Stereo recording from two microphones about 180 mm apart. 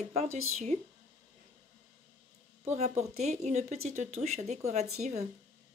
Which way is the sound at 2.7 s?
40° right (ahead or behind).